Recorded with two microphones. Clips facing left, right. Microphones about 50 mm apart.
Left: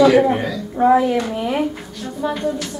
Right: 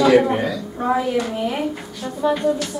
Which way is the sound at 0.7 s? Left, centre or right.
Centre.